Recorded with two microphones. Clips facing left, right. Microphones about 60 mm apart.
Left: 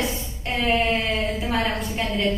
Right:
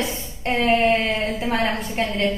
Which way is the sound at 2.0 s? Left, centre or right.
Right.